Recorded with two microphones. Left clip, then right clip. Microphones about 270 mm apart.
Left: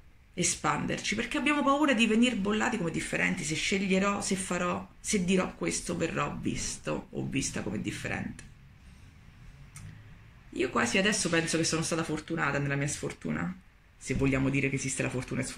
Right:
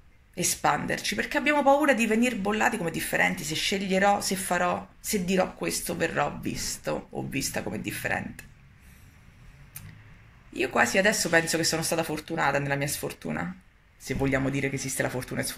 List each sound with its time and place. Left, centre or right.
0.4 s speech: centre
10.5 s speech: centre